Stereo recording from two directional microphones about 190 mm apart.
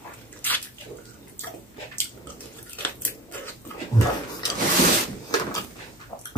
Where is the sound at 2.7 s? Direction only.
10° left (ahead or behind).